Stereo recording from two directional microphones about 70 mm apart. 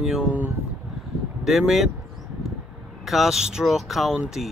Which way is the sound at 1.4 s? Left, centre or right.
Centre.